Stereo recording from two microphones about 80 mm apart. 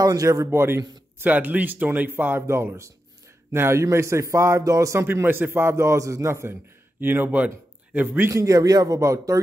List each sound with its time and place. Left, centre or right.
0.0 s speech: right
0.5 s a man's voice: right
5.0 s a man's voice: right
7.0 s a man's voice: right
8.3 s speech: right